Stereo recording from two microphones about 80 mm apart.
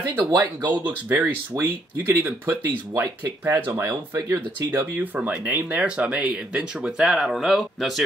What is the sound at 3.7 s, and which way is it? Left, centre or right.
Speech, right.